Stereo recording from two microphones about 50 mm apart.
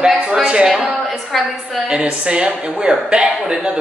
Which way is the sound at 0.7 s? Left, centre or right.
Centre.